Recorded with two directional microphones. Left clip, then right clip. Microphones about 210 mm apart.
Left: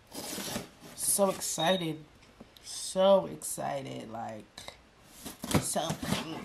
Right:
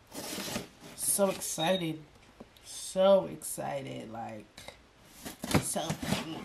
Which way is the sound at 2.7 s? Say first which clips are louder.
Even; 5° left (ahead or behind).